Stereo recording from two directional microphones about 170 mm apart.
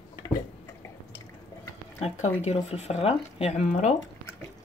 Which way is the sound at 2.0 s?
40° left (ahead or behind).